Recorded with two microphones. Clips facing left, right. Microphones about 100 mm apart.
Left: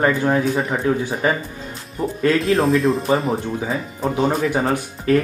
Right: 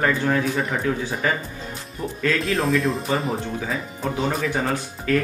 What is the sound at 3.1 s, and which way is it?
Speech, 30° left (ahead or behind).